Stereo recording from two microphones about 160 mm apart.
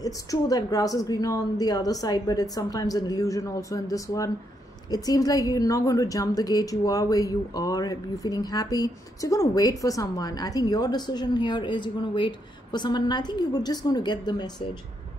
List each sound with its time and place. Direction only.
0.0 s a woman's voice: 20° left (ahead or behind)